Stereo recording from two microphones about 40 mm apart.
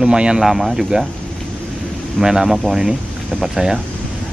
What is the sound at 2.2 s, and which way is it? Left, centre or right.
Speech, centre.